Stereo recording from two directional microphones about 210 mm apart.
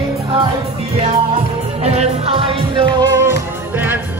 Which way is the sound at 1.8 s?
30° right (ahead or behind).